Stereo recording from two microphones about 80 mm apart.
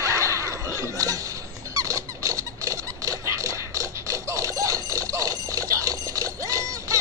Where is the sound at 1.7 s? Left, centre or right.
Right.